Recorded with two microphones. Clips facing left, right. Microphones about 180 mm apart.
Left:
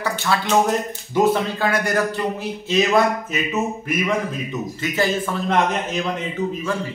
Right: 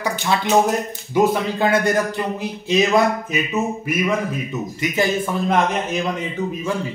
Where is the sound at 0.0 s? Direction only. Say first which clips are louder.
Right 1 dB; 15° right (ahead or behind).